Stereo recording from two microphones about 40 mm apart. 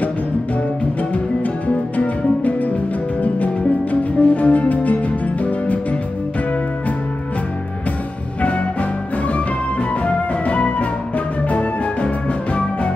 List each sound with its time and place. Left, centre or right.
2.0 s music: left
3.9 s music: left
8.4 s music: left
10.0 s music: left